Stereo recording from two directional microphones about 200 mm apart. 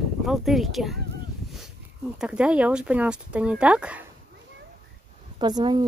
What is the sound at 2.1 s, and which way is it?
Speech, 5° right (ahead or behind).